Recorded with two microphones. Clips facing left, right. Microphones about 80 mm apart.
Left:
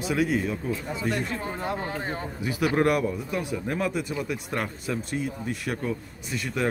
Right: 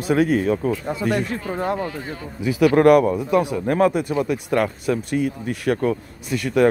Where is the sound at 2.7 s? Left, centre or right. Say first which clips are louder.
Right 10 dB; right.